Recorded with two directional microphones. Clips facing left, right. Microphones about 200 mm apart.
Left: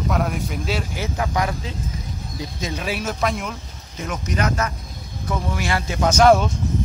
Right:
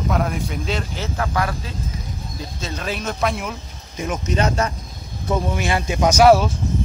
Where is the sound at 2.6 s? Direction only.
10° left (ahead or behind).